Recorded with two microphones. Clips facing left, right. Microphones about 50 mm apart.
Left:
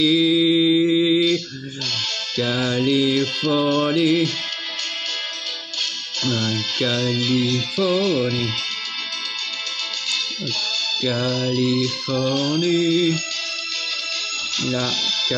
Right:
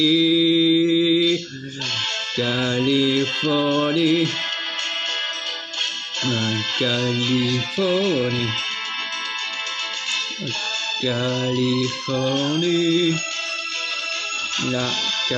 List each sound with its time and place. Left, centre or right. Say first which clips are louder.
0.0 s mantra: even; centre
2.3 s music: left 1 dB; right
2.9 s mantra: even; centre
3.5 s music: left 1 dB; centre
6.2 s music: even; right
11.1 s music: even; right
14.7 s speech: left 1 dB; right